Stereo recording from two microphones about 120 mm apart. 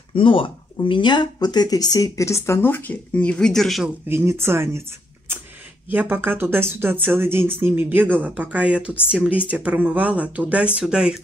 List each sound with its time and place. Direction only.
0.1 s speech: 45° left (ahead or behind); by 3.9 s centre (ahead or behind)
4.1 s speech: 20° right (ahead or behind)
5.9 s speech: 15° right (ahead or behind)